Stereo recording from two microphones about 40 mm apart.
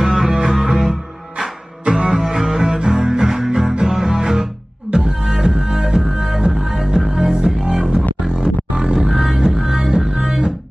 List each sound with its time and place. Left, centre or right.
0.0 s music: centre
1.9 s music: centre
9.8 s music: centre